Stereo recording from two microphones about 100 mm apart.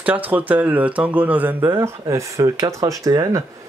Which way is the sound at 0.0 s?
15° right (ahead or behind).